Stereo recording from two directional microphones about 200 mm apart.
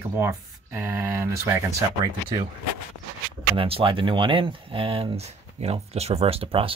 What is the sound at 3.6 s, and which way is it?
Speech, 25° right (ahead or behind).